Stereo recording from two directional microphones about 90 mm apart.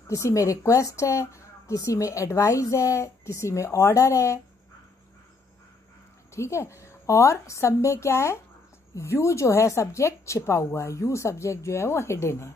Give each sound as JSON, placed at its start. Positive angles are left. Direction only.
{"t": 0.1, "sound": "speech", "side_deg": 35}
{"t": 6.3, "sound": "speech", "side_deg": 30}